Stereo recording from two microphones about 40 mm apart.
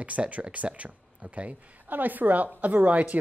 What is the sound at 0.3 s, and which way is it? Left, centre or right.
Speech, right.